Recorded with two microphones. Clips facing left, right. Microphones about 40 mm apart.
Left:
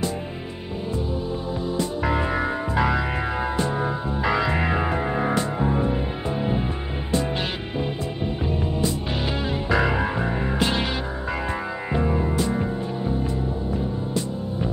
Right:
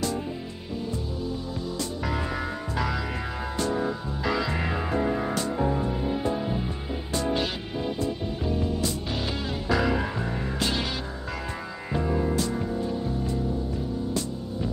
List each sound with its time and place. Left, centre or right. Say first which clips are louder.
1.8 s music: left 7 dB; left
11.9 s music: left 2 dB; left